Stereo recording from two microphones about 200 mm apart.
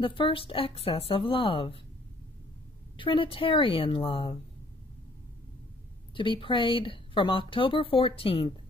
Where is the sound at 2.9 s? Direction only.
25° left (ahead or behind).